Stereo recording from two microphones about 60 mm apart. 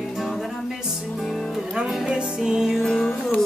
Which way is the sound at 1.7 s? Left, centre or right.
Centre.